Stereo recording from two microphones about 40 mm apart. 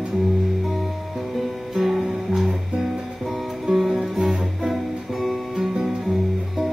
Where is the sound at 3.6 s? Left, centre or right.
Centre.